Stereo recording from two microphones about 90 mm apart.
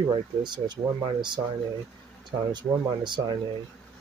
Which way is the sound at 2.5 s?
60° right (ahead or behind).